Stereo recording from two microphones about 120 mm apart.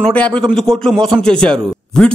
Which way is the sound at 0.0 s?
10° left (ahead or behind).